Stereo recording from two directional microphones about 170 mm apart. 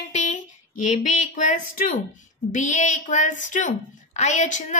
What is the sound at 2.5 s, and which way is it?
A woman's voice, 45° left (ahead or behind).